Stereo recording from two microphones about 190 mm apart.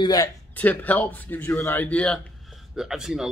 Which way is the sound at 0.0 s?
20° left (ahead or behind).